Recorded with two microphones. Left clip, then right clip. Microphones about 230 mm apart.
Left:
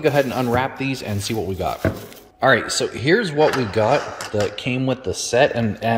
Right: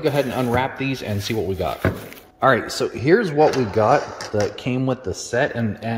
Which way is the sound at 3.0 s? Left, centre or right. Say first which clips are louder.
Right 2 dB; right.